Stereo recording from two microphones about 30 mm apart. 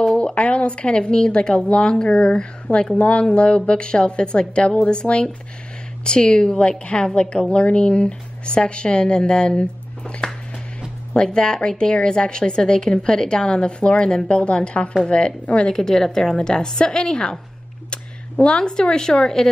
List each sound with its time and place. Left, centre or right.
0.0 s a woman's voice: left
11.2 s a woman's voice: left
15.7 s a woman's voice: centre
16.3 s a woman's voice: left
17.8 s a sound: left
19.1 s a woman's voice: centre